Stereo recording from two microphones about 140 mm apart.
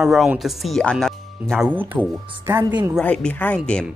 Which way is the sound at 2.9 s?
5° left (ahead or behind).